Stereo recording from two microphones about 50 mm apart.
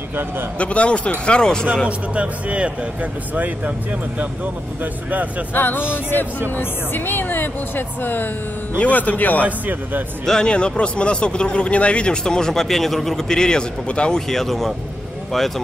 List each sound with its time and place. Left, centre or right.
0.6 s speech: left
1.9 s speech: right
5.5 s speech: left
8.8 s speech: left
10.2 s speech: centre
10.5 s speech: left
14.3 s speech: centre